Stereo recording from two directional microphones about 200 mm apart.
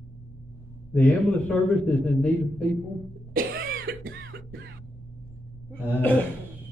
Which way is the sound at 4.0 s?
70° right (ahead or behind).